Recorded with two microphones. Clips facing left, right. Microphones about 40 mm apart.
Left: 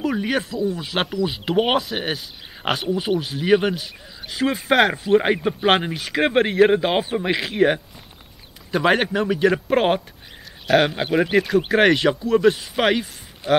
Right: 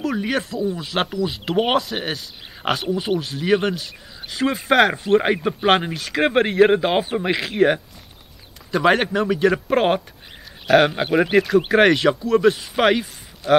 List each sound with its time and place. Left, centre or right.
0.0 s speech: centre
13.4 s speech: left